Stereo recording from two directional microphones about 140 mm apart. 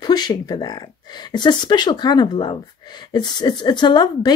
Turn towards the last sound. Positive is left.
turn(degrees=30)  # may be behind; listen again after turning